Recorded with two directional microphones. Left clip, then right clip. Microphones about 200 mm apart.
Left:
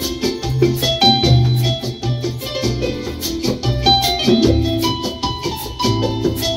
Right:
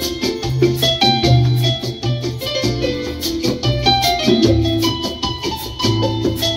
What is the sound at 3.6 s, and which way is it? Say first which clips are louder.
Music: left 1 dB; 45° right (ahead or behind).